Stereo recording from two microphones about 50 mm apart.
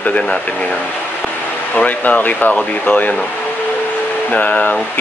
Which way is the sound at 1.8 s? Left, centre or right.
Left.